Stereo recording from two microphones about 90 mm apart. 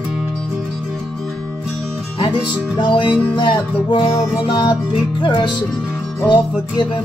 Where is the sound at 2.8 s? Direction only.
60° left (ahead or behind).